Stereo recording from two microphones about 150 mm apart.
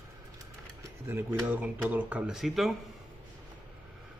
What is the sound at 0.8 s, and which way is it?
Speech, 15° right (ahead or behind).